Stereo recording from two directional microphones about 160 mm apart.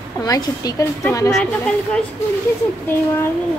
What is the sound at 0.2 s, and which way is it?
Speech, 20° left (ahead or behind).